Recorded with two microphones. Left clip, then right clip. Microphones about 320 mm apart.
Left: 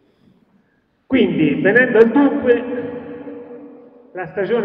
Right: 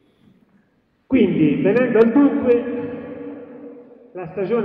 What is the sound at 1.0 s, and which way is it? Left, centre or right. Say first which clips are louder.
A man's voice: left 1 dB; left.